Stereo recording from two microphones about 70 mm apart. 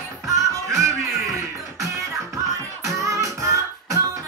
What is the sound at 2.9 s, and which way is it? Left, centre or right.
Music, right.